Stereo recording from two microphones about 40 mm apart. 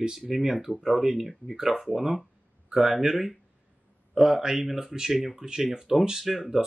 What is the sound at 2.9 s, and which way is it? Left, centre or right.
Speech, centre.